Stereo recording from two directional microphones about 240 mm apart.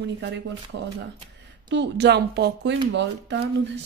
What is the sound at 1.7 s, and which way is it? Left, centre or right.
Speech, right.